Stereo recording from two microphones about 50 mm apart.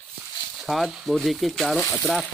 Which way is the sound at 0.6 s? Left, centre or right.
Centre.